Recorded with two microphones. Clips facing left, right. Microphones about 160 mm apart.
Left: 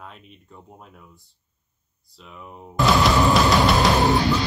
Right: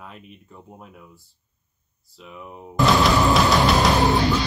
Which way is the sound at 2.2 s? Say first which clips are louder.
Right 2 dB; 5° right (ahead or behind).